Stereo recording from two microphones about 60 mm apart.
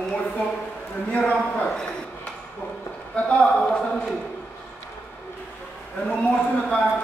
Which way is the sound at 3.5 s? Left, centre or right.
Centre.